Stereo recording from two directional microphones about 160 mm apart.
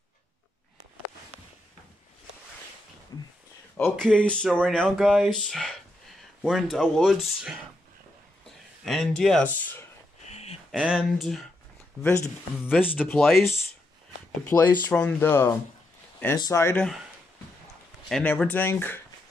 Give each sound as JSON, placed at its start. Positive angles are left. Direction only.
{"t": 4.0, "sound": "speech", "side_deg": 5}
{"t": 8.8, "sound": "speech", "side_deg": 0}
{"t": 10.2, "sound": "a sound", "side_deg": 40}
{"t": 10.7, "sound": "speech", "side_deg": -5}
{"t": 12.6, "sound": "speech", "side_deg": 10}
{"t": 14.4, "sound": "speech", "side_deg": 10}
{"t": 18.0, "sound": "speech", "side_deg": 5}